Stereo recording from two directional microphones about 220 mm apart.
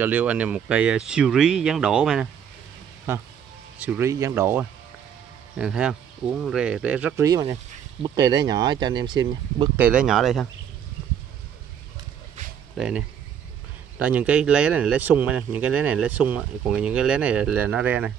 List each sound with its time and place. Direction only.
0.0 s speech: 5° right (ahead or behind)
8.0 s speech: 20° right (ahead or behind)
9.8 s speech: 5° right (ahead or behind)
12.7 s speech: 5° right (ahead or behind)